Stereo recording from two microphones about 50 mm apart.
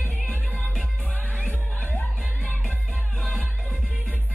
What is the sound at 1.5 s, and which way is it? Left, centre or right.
Music, left.